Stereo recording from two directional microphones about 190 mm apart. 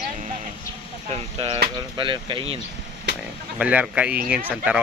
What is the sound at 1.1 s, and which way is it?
Speech, 25° right (ahead or behind).